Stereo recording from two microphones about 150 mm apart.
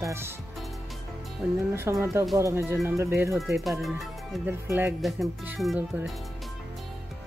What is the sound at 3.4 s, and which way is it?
Speech, centre (ahead or behind).